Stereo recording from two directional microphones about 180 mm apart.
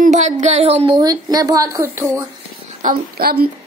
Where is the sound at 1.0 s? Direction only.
20° right (ahead or behind).